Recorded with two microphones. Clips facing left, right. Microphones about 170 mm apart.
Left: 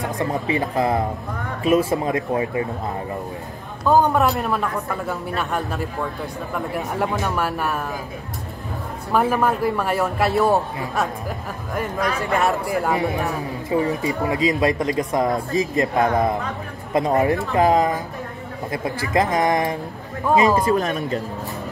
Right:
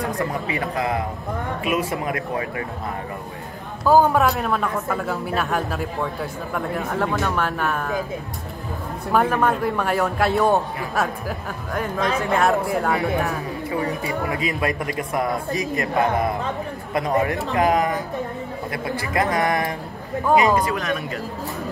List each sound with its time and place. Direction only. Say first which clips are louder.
0.0 s speech: left 1 dB; 30° left (ahead or behind)
3.8 s a man's voice: right 1 dB; centre (ahead or behind)
6.9 s speech: even; 15° left (ahead or behind)
9.1 s a man's voice: even; 5° left (ahead or behind)
12.3 s a man's voice: right 2 dB; centre (ahead or behind)
13.7 s speech: left 5 dB; 20° left (ahead or behind)